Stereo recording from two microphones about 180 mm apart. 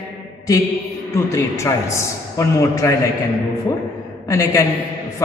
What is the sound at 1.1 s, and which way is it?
A woman's voice, 15° left (ahead or behind).